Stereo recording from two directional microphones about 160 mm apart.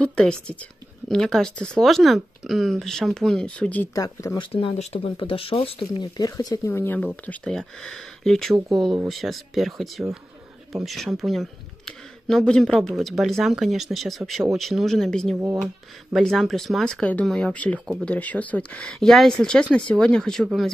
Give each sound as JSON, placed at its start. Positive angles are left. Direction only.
{"t": 0.0, "sound": "speech", "side_deg": 5}
{"t": 3.9, "sound": "speech", "side_deg": 20}
{"t": 4.5, "sound": "speech", "side_deg": 35}
{"t": 15.3, "sound": "speech", "side_deg": -15}
{"t": 15.6, "sound": "speech", "side_deg": 0}